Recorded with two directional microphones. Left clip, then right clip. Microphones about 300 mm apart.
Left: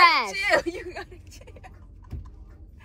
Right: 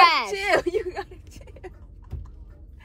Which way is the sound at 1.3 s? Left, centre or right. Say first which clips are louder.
Right 3 dB; right.